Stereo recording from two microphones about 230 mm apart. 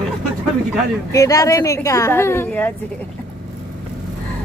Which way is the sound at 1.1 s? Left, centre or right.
Centre.